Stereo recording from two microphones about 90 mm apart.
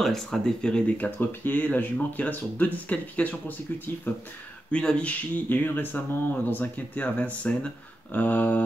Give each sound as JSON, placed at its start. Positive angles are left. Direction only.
{"t": 0.0, "sound": "speech", "side_deg": 5}